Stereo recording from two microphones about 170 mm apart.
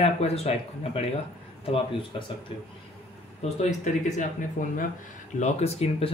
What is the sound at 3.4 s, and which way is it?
Speech, 45° left (ahead or behind).